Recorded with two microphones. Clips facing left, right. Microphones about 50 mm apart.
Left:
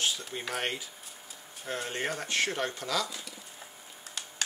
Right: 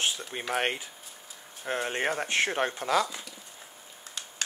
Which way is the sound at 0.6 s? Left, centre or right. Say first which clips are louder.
Right 7 dB; right.